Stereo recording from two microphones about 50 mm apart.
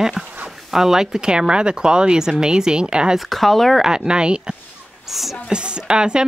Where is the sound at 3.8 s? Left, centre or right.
Centre.